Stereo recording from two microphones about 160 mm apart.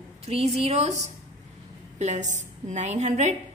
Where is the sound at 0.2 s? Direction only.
40° right (ahead or behind).